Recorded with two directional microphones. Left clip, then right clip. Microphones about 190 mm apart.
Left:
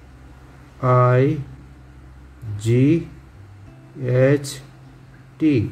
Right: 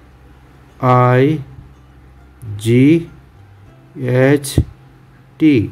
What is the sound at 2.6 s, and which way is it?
Speech, 50° right (ahead or behind).